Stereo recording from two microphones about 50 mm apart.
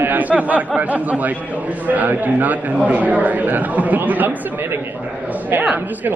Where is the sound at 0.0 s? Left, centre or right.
Right.